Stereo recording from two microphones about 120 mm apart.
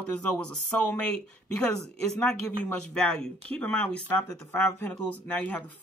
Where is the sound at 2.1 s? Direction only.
5° left (ahead or behind).